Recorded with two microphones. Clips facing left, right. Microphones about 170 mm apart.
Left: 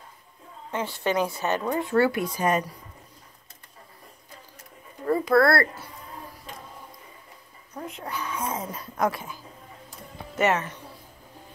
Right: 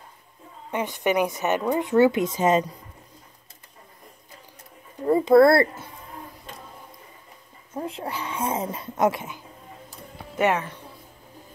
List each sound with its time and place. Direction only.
0.7 s speech: 15° right (ahead or behind)
5.0 s speech: 20° right (ahead or behind)
7.7 s speech: 30° right (ahead or behind); by 10.8 s 15° right (ahead or behind)